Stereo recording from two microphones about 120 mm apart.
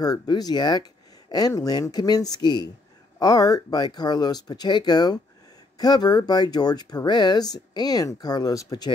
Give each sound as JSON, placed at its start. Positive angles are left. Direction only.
{"t": 0.0, "sound": "speech", "side_deg": 35}